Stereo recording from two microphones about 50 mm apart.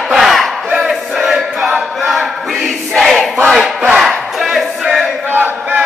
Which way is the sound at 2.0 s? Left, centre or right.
Centre.